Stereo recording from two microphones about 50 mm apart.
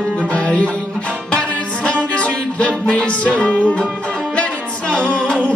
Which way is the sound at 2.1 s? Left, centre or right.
Left.